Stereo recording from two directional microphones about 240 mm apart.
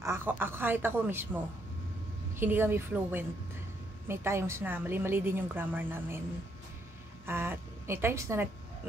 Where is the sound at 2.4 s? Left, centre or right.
Centre.